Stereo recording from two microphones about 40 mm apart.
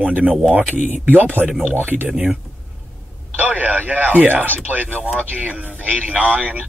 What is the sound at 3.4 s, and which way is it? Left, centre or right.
Speech, right.